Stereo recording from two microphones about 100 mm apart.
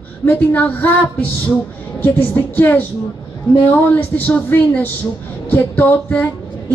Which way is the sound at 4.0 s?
15° left (ahead or behind).